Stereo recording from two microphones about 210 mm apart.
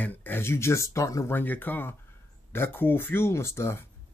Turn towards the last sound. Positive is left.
turn(degrees=10)  # may be behind; listen again after turning